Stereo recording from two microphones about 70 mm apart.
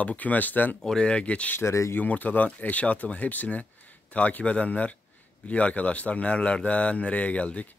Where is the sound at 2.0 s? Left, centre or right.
Left.